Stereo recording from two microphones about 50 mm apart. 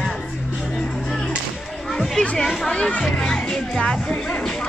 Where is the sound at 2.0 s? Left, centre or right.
Centre.